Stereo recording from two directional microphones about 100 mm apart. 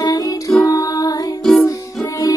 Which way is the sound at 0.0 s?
35° left (ahead or behind).